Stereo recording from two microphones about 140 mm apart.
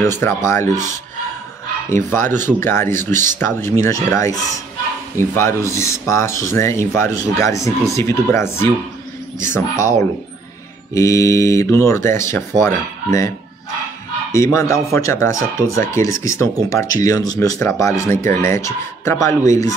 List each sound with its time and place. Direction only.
0.0 s speech: 15° left (ahead or behind)
1.9 s speech: 20° left (ahead or behind)
11.0 s speech: 20° left (ahead or behind)
14.3 s speech: 20° left (ahead or behind)